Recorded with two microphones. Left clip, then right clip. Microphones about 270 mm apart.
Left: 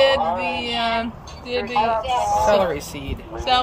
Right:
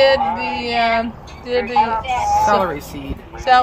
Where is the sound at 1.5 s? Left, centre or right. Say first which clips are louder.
Right 4 dB; right.